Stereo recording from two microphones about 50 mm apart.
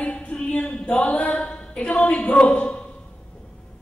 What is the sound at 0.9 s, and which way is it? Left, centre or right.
Speech, left.